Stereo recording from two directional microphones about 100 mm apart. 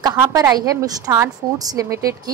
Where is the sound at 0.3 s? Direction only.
40° right (ahead or behind).